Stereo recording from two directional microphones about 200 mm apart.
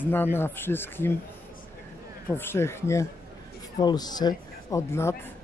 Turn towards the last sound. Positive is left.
turn(degrees=10)  # may be behind; listen again after turning